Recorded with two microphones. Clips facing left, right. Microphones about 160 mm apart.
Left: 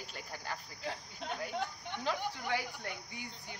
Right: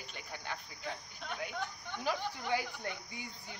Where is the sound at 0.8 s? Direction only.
30° left (ahead or behind).